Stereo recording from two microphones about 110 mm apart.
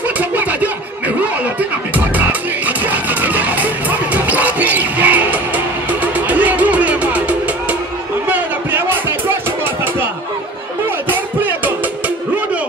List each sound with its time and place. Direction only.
0.2 s a sound: 15° right (ahead or behind)
2.1 s music: 15° right (ahead or behind)
11.1 s music: 15° right (ahead or behind)